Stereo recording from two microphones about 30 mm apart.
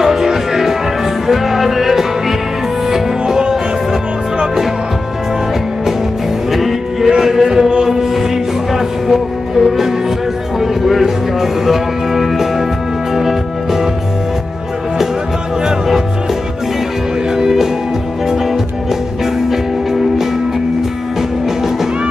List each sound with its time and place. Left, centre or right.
0.0 s music: centre
6.5 s music: centre
7.4 s chant: centre
7.9 s music: centre
17.4 s music: centre
19.5 s music: centre